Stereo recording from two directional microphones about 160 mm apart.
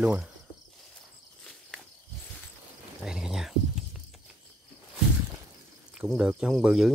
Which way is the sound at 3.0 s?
5° right (ahead or behind).